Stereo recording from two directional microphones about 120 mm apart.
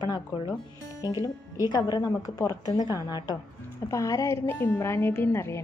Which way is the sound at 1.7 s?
35° left (ahead or behind).